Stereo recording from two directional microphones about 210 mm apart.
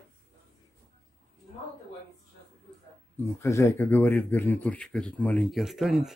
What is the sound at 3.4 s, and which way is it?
Speech, 15° left (ahead or behind).